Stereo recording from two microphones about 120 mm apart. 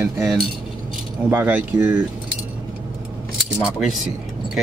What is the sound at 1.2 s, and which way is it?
Speech, 15° right (ahead or behind).